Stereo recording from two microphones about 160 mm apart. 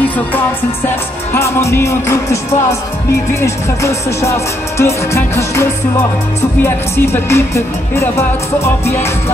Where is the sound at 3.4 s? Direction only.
20° left (ahead or behind).